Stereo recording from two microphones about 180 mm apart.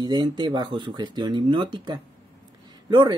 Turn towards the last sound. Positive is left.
turn(degrees=-25)  # may be behind; listen again after turning